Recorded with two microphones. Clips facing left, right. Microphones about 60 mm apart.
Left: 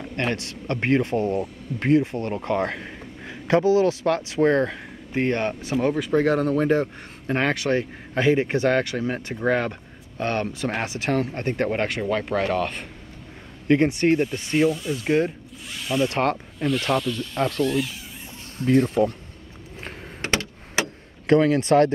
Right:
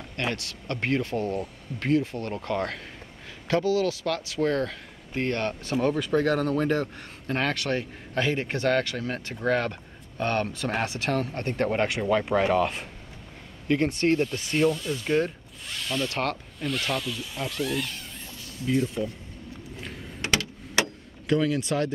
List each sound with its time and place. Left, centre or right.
0.1 s speech: left; by 12.8 s centre
13.8 s speech: centre
14.3 s speech: centre
15.0 s speech: left
15.7 s zipper: centre
16.0 s speech: left
16.5 s speech: centre
18.6 s speech: left
19.8 s power windows: left
21.3 s speech: left